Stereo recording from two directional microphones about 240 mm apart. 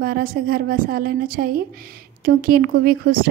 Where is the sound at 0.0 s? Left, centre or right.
Right.